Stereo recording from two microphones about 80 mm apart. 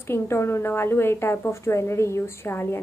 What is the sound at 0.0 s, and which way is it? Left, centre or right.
A woman's voice, left.